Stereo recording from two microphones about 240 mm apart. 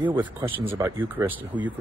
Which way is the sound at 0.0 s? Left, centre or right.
Centre.